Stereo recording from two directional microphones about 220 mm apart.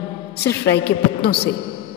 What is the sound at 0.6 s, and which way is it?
Speech, 50° left (ahead or behind).